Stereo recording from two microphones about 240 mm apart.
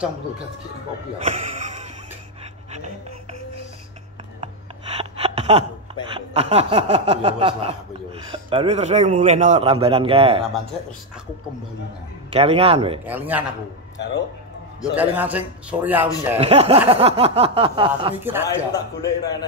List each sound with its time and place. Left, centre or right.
1.2 s a sound: right
4.9 s a sound: right
6.0 s chuckle: right
12.3 s chuckle: right
13.0 s a man's voice: centre
14.8 s a man's voice: centre
16.3 s chuckle: right
18.2 s a man's voice: centre
18.7 s a man's voice: centre